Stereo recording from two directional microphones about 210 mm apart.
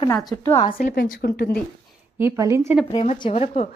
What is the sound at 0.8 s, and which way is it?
Speech, 45° left (ahead or behind).